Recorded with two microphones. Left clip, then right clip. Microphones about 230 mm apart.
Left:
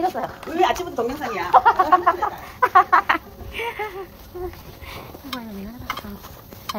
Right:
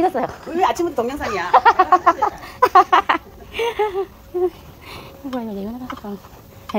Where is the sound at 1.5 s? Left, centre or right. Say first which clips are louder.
Right 2 dB; right.